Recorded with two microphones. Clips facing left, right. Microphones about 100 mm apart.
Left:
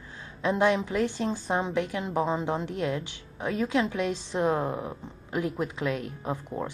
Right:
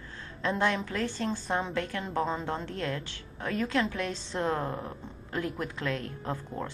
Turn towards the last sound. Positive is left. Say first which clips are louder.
# left 3 dB
turn(degrees=15)  # may be behind; listen again after turning